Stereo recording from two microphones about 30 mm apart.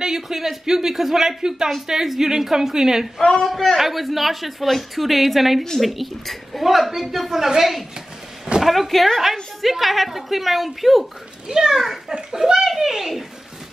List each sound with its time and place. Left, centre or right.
0.0 s speech: centre
3.2 s a man's voice: left
3.4 s a woman's voice: centre
8.6 s a woman's voice: centre
11.4 s speech: centre